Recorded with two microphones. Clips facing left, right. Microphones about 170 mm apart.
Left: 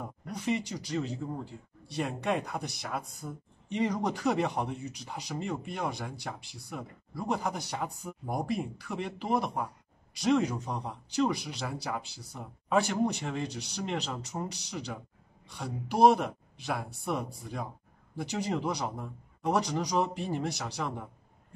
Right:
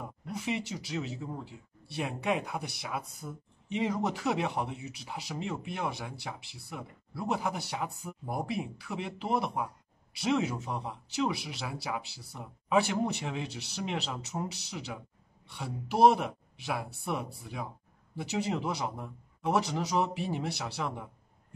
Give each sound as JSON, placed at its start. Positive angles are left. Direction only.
{"t": 0.5, "sound": "speech", "side_deg": -5}